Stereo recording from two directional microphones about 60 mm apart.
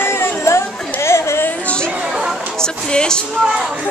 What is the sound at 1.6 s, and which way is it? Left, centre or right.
Chatter, centre.